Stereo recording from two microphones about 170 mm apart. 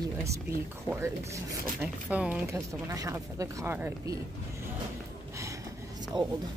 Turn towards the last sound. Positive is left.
turn(degrees=-25)  # may be behind; listen again after turning